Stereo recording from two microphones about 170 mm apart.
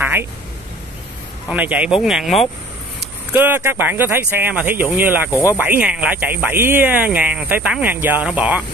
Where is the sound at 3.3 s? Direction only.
10° right (ahead or behind).